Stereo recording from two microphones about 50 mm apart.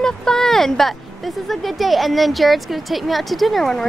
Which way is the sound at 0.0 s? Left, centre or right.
Centre.